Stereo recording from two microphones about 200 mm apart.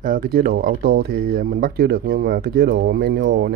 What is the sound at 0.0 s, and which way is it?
Speech, 45° right (ahead or behind).